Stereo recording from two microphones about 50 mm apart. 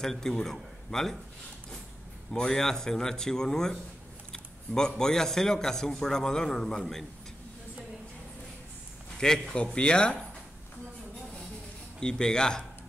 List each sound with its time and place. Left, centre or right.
0.0 s a man's voice: centre
2.3 s a man's voice: centre
9.2 s speech: centre
12.0 s a man's voice: centre